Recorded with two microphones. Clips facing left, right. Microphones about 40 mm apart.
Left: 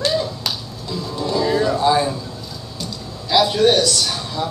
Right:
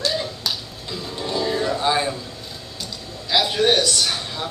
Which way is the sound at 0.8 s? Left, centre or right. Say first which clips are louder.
Left 5 dB; right.